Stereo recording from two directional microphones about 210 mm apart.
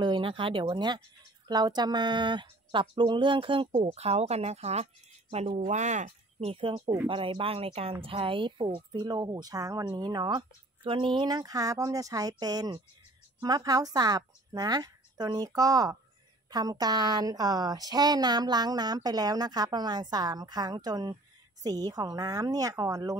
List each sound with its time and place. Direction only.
0.0 s a woman's voice: 20° right (ahead or behind)